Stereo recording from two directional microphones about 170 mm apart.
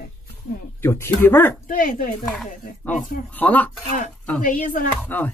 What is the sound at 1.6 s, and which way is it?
Speech, 55° left (ahead or behind).